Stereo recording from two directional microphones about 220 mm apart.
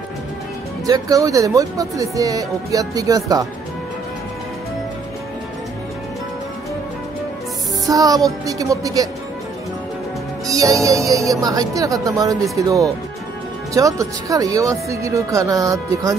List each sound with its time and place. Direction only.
0.8 s speech: 15° right (ahead or behind)
7.8 s speech: 15° right (ahead or behind)
10.4 s speech: 15° right (ahead or behind)